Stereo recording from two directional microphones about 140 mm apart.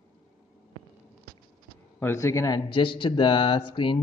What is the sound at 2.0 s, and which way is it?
Speech, 20° left (ahead or behind).